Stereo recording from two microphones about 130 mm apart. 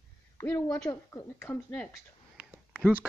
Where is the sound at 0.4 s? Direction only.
15° left (ahead or behind).